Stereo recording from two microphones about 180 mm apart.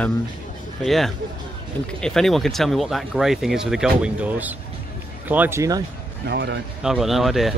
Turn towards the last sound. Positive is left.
turn(degrees=0)  # may be behind; listen again after turning